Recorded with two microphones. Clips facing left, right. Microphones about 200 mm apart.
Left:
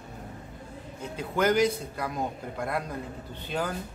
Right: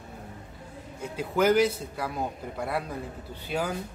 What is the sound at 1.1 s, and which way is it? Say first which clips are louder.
A man's voice: right 2 dB; 5° right (ahead or behind).